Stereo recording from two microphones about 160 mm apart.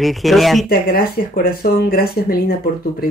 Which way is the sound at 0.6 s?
70° left (ahead or behind).